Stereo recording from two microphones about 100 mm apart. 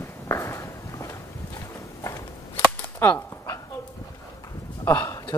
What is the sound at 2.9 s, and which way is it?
Whip, 20° left (ahead or behind).